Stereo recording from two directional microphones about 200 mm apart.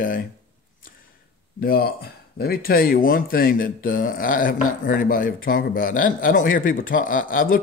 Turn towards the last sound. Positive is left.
turn(degrees=45)  # may be behind; listen again after turning